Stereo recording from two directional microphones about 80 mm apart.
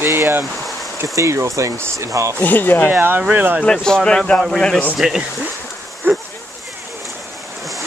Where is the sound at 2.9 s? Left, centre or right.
Right.